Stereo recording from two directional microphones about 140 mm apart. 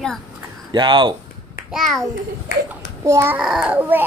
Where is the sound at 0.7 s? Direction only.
35° right (ahead or behind).